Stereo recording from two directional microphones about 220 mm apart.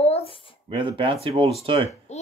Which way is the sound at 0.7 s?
20° right (ahead or behind).